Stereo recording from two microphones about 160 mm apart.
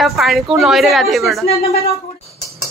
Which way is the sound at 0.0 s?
Centre (ahead or behind).